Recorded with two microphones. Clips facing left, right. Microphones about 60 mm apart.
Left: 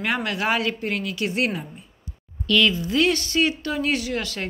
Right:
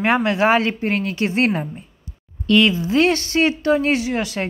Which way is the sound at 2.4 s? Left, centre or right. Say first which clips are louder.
Right 4 dB; right.